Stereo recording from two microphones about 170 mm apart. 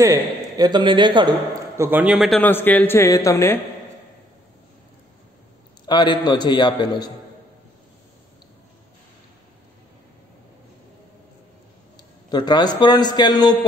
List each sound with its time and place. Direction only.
0.0 s a man's voice: 20° right (ahead or behind)
1.8 s a man's voice: 10° right (ahead or behind); by 3.6 s 15° left (ahead or behind)
5.9 s a man's voice: 25° left (ahead or behind)
12.3 s a man's voice: 25° left (ahead or behind)